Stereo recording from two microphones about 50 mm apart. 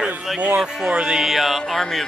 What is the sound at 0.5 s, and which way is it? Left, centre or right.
Music, centre.